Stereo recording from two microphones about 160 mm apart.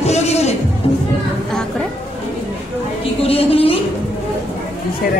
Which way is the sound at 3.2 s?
35° left (ahead or behind).